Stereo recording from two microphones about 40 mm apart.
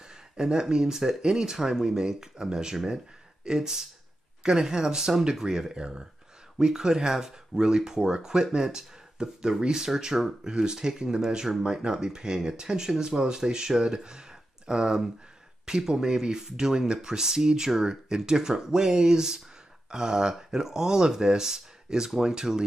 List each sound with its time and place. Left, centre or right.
0.4 s speech: centre